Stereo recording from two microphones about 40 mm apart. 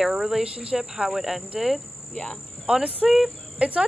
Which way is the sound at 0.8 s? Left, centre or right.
Centre.